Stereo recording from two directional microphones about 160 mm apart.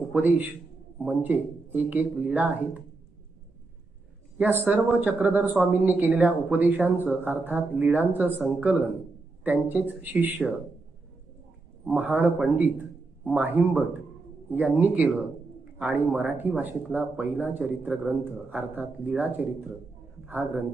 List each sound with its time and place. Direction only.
0.1 s a man's voice: 10° right (ahead or behind)
4.4 s speech: 10° right (ahead or behind)
11.9 s a man's voice: 10° right (ahead or behind)